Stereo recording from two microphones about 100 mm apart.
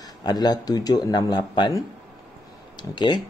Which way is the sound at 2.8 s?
50° left (ahead or behind).